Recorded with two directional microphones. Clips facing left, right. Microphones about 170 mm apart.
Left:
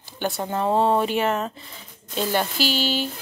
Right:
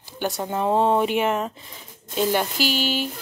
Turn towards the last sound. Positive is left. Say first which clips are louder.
# even
turn(degrees=-15)  # may be behind; listen again after turning